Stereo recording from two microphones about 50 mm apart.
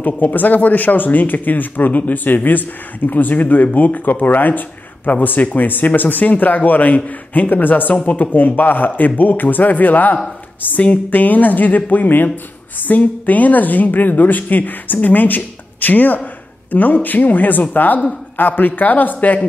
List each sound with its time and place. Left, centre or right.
0.0 s speech: left